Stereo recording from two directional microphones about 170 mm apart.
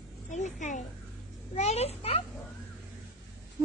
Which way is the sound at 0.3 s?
45° left (ahead or behind).